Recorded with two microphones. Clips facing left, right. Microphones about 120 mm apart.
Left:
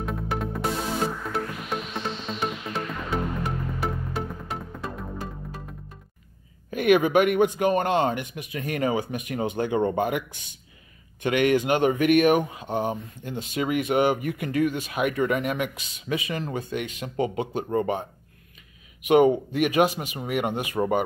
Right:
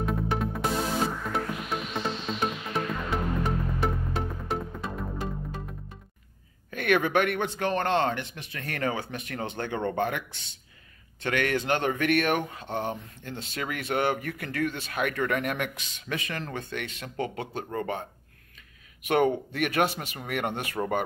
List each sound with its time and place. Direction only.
0.0 s music: centre (ahead or behind)
6.7 s speech: 10° left (ahead or behind)
19.0 s speech: 10° left (ahead or behind)